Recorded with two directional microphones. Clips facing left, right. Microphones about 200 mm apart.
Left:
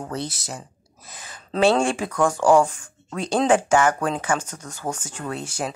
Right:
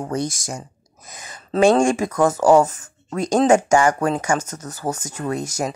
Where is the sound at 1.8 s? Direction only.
45° right (ahead or behind).